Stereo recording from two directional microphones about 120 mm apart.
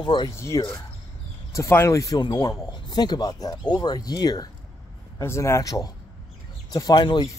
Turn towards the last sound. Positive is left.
turn(degrees=40)  # may be behind; listen again after turning